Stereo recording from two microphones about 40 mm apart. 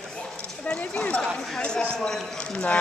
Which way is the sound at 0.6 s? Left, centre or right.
Left.